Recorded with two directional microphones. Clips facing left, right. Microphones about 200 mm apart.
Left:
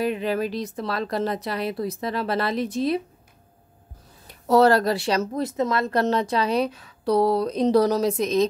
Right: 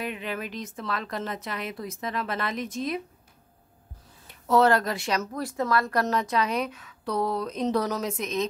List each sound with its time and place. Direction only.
0.0 s speech: 35° left (ahead or behind)
4.3 s speech: 35° left (ahead or behind)